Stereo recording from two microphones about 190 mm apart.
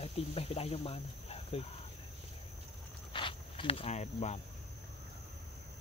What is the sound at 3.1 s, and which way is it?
Cricket, 25° left (ahead or behind).